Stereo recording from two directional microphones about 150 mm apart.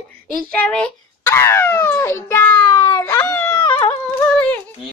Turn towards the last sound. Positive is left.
turn(degrees=10)  # may be behind; listen again after turning